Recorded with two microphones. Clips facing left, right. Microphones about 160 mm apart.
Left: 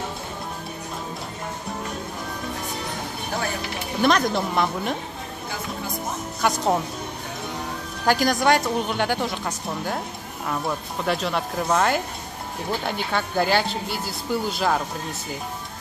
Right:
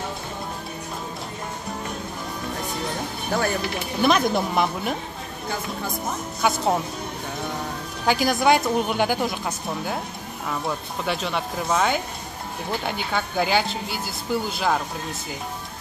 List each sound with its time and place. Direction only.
4.0 s speech: 5° right (ahead or behind)
6.4 s speech: centre (ahead or behind)
8.0 s speech: centre (ahead or behind)